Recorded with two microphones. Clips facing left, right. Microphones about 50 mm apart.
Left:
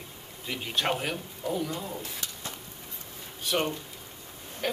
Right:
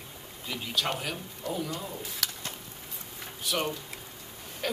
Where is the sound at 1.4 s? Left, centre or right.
Centre.